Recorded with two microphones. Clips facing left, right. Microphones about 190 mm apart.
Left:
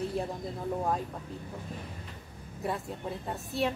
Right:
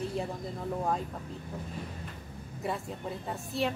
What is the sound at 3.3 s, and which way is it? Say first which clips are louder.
Speech: left 1 dB; centre (ahead or behind).